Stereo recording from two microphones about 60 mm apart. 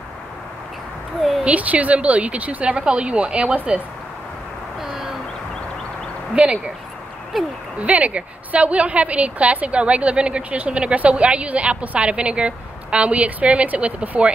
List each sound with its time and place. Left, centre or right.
1.4 s a woman's voice: right
6.3 s speech: centre
7.3 s speech: centre
7.8 s a woman's voice: right